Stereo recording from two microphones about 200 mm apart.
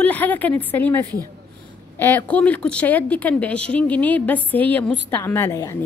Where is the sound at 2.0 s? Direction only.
10° left (ahead or behind).